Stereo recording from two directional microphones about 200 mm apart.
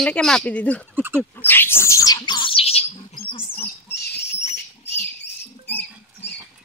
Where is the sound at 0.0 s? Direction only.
5° left (ahead or behind).